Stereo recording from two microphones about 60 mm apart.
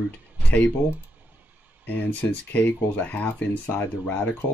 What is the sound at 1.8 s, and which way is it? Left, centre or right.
Speech, left.